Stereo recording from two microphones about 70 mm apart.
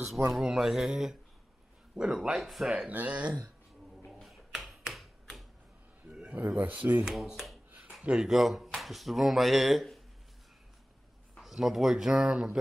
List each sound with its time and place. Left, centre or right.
0.3 s speech: centre
2.9 s speech: right
4.2 s finger snapping: centre
6.0 s speech: centre
7.1 s speech: centre
8.0 s speech: centre
8.3 s speech: centre
11.4 s speech: centre